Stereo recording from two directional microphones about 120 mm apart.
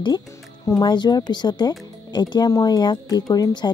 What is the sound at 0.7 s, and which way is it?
Speech, 35° left (ahead or behind).